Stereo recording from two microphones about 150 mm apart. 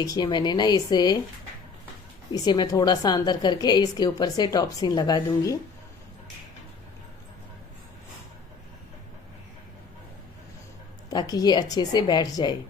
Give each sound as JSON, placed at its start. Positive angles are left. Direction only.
{"t": 0.0, "sound": "a woman's voice", "side_deg": 30}
{"t": 2.3, "sound": "a woman's voice", "side_deg": 25}
{"t": 11.1, "sound": "a woman's voice", "side_deg": 25}